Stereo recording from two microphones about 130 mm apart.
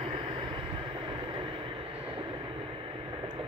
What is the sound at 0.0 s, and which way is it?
Vehicle, 40° right (ahead or behind).